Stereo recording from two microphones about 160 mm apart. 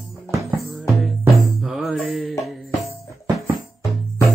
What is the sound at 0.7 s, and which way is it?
Music, centre (ahead or behind).